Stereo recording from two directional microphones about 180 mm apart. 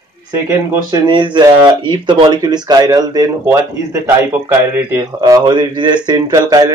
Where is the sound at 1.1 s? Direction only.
25° right (ahead or behind).